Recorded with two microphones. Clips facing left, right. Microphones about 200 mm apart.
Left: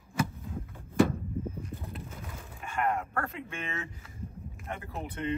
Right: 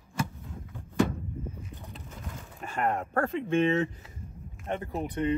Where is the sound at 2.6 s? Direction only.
45° right (ahead or behind).